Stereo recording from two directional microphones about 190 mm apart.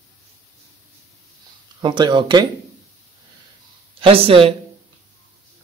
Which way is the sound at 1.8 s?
25° right (ahead or behind).